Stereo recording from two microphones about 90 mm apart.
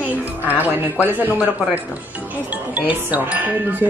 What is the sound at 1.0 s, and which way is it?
Speech, 20° right (ahead or behind).